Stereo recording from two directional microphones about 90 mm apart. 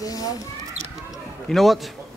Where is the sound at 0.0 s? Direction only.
40° left (ahead or behind).